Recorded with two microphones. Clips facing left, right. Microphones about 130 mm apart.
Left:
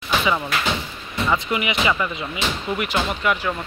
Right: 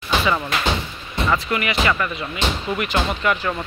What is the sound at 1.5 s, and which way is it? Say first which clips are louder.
Speech: right 1 dB; 15° left (ahead or behind).